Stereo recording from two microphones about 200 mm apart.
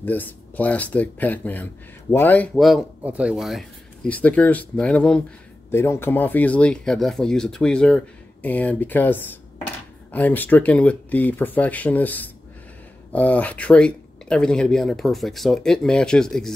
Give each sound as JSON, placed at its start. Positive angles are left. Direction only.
{"t": 0.0, "sound": "speech", "side_deg": 10}
{"t": 2.5, "sound": "speech", "side_deg": 0}